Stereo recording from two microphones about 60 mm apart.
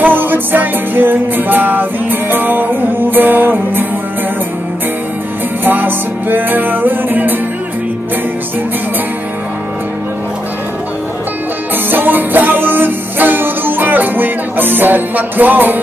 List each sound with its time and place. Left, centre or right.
0.0 s music: right
5.6 s music: right
11.9 s music: right